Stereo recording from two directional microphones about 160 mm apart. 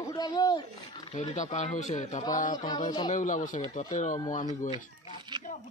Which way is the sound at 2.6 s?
25° left (ahead or behind).